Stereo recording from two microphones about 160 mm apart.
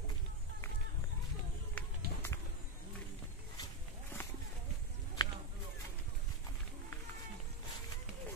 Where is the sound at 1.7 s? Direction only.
15° left (ahead or behind).